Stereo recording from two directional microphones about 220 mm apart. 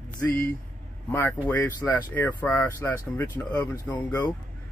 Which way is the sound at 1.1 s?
10° left (ahead or behind).